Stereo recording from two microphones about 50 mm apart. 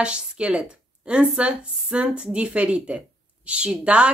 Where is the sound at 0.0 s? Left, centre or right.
Right.